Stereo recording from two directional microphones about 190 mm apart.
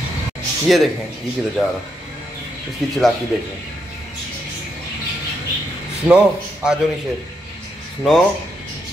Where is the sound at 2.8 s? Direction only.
Centre (ahead or behind).